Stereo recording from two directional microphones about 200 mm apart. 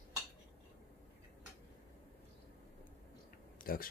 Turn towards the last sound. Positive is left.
turn(degrees=45)  # may be behind; listen again after turning